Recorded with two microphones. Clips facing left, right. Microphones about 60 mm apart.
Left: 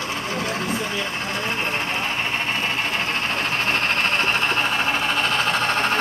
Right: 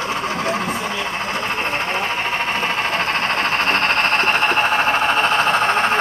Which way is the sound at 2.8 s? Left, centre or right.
Right.